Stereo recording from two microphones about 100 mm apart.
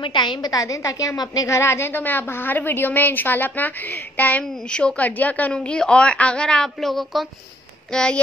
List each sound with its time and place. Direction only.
0.0 s a woman's voice: 50° left (ahead or behind); by 8.2 s 10° left (ahead or behind)